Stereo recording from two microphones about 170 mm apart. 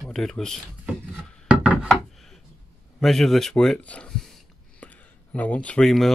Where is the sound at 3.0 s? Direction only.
Centre (ahead or behind).